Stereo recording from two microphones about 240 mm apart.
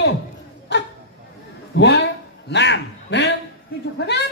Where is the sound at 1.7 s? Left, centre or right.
Left.